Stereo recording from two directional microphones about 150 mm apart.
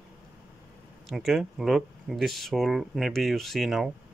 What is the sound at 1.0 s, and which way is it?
Speech, centre (ahead or behind).